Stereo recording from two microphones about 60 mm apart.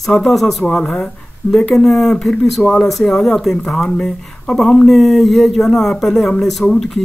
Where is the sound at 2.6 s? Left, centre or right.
Centre.